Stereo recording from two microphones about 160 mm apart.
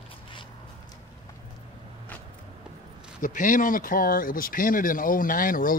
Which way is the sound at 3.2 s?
55° left (ahead or behind).